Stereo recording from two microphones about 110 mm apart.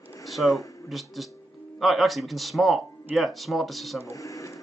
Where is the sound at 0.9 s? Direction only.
Centre (ahead or behind).